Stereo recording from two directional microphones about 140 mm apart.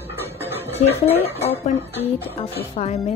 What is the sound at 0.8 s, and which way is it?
Speech, 45° left (ahead or behind).